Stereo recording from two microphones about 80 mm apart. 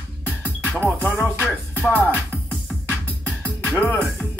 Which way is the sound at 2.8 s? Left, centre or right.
Left.